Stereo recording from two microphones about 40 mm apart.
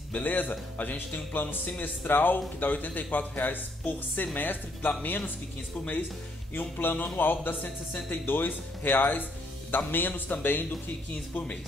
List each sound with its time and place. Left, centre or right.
0.1 s a man's voice: left
6.8 s a man's voice: left